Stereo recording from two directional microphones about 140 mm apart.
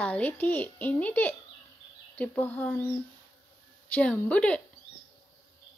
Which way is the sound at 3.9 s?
10° left (ahead or behind).